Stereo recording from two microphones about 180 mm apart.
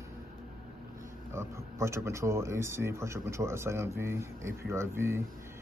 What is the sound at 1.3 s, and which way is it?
Speech, 15° right (ahead or behind).